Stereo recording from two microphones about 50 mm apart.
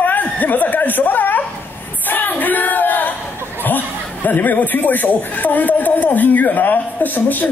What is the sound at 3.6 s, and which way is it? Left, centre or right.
Speech, left.